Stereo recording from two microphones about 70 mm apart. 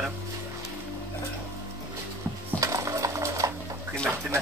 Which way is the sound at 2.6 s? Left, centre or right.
Right.